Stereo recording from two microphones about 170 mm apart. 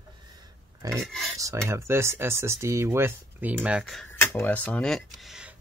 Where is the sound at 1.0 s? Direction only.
Centre (ahead or behind).